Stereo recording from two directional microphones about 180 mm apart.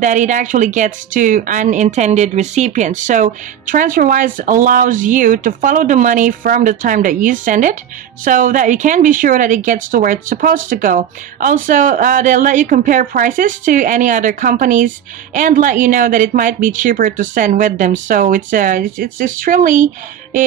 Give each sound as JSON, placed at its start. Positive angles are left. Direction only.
{"t": 0.0, "sound": "speech", "side_deg": -45}